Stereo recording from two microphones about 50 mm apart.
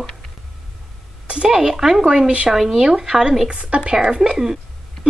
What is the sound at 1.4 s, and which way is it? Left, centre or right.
Speech, centre.